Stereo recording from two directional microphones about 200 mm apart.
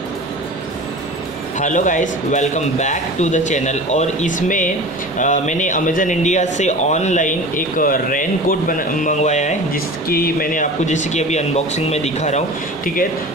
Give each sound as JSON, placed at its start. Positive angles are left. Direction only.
{"t": 1.6, "sound": "speech", "side_deg": 40}
{"t": 10.0, "sound": "speech", "side_deg": 50}